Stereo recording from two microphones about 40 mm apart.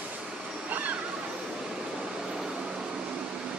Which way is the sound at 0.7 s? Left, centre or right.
Right.